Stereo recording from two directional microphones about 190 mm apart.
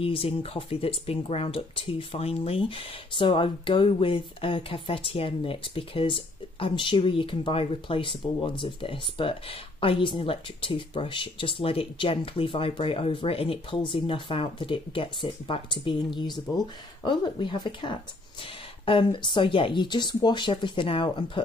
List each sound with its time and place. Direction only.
0.0 s speech: 30° left (ahead or behind)